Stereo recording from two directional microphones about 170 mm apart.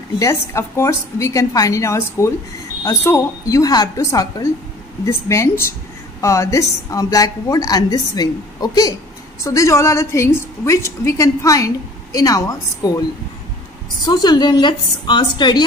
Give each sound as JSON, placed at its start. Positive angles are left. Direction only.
{"t": 0.2, "sound": "a woman's voice", "side_deg": 15}
{"t": 14.0, "sound": "a woman's voice", "side_deg": 25}